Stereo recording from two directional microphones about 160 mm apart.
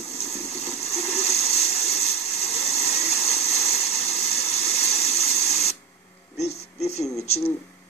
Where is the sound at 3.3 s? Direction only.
40° left (ahead or behind).